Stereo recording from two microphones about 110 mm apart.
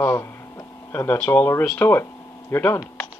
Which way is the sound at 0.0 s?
25° left (ahead or behind).